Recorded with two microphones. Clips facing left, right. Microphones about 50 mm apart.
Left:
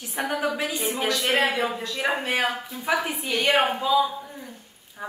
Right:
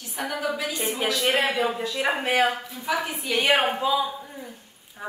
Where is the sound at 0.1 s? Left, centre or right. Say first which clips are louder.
Left 3 dB; centre.